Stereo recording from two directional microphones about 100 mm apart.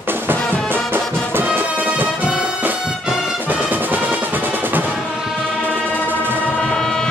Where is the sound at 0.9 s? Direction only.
20° right (ahead or behind).